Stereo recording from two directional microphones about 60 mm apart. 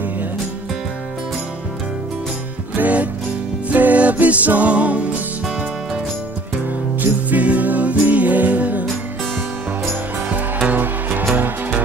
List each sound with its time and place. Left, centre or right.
2.7 s music: right
7.0 s music: right
10.3 s music: right